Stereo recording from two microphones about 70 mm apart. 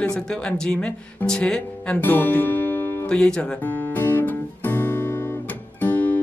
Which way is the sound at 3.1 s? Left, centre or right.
Centre.